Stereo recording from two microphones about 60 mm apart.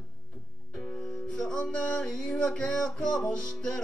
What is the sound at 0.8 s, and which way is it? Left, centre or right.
Music, centre.